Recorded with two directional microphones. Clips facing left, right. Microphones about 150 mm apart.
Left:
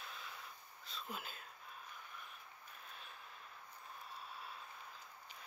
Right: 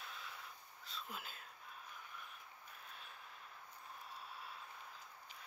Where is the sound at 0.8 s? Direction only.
Centre (ahead or behind).